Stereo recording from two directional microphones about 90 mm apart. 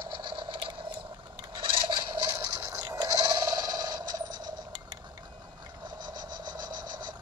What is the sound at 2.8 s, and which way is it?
Coin, 50° right (ahead or behind).